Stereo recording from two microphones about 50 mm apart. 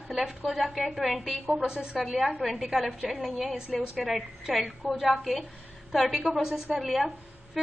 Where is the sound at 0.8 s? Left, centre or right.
Centre.